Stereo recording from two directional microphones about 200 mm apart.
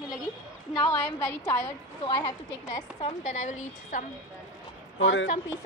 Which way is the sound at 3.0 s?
35° left (ahead or behind).